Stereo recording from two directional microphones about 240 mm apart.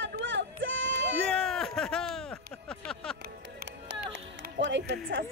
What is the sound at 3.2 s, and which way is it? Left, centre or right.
Music, right.